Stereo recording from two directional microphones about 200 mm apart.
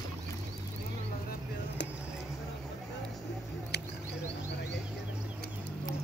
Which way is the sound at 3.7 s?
55° left (ahead or behind).